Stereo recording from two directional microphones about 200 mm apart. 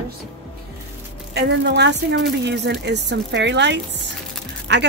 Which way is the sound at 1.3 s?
60° right (ahead or behind).